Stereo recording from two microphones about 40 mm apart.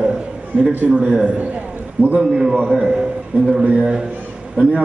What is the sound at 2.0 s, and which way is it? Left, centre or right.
Speech, right.